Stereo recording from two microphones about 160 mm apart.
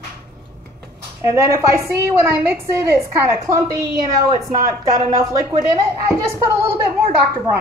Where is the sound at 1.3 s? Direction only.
15° right (ahead or behind).